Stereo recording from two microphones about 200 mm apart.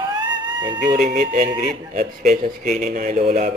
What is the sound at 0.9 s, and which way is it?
Speech, 40° right (ahead or behind).